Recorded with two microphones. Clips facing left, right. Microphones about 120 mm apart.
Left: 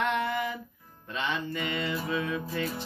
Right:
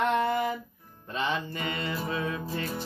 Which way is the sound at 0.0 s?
40° right (ahead or behind).